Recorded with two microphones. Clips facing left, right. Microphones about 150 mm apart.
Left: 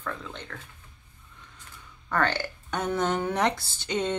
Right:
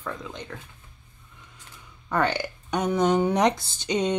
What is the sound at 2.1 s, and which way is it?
Speech, 15° right (ahead or behind).